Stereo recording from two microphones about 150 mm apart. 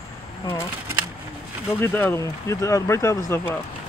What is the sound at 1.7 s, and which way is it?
Speech, 15° left (ahead or behind).